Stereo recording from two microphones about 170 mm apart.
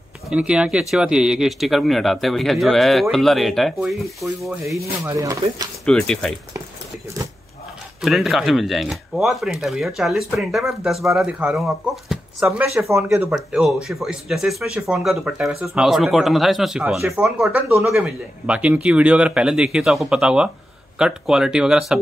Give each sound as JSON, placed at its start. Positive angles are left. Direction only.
{"t": 0.3, "sound": "speech", "side_deg": -5}
{"t": 5.0, "sound": "speech", "side_deg": -20}
{"t": 5.9, "sound": "speech", "side_deg": 5}
{"t": 8.0, "sound": "speech", "side_deg": 0}
{"t": 12.9, "sound": "speech", "side_deg": -15}
{"t": 13.3, "sound": "speech", "side_deg": 0}